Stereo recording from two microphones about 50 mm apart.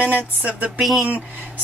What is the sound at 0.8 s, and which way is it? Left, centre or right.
Speech, centre.